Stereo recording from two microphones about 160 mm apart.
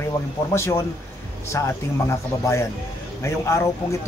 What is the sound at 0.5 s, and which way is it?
Speech, 15° left (ahead or behind).